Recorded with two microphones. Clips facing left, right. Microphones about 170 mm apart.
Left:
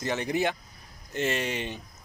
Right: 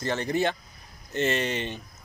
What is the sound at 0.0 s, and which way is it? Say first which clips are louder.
Speech: right 1 dB; 15° left (ahead or behind).